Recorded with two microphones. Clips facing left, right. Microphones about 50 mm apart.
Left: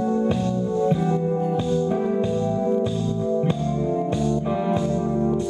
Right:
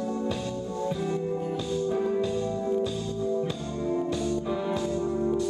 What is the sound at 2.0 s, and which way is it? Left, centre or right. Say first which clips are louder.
Music: left 4 dB; centre.